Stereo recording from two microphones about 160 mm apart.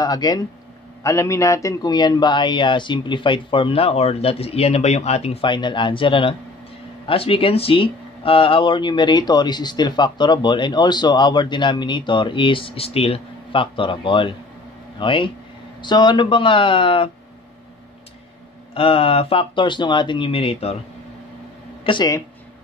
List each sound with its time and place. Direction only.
0.0 s speech: 25° left (ahead or behind)
18.8 s speech: 35° left (ahead or behind)
21.8 s speech: 25° left (ahead or behind)